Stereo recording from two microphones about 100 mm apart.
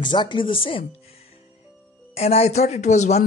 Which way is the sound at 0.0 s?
50° left (ahead or behind).